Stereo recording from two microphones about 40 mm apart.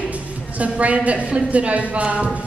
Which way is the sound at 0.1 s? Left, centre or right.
Right.